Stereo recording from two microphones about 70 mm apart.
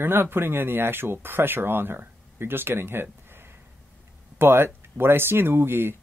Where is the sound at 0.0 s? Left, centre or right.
Right.